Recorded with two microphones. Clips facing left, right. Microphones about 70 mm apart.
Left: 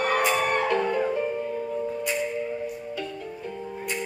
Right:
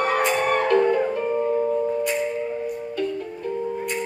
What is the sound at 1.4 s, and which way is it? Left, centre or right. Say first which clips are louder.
Music: right 8 dB; right.